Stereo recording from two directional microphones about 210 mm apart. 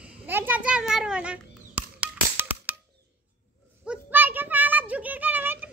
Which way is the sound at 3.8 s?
10° right (ahead or behind).